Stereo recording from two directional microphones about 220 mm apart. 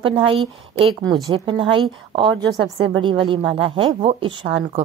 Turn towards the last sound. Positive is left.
turn(degrees=-25)  # may be behind; listen again after turning